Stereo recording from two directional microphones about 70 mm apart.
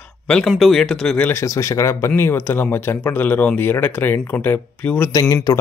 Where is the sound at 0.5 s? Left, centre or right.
Centre.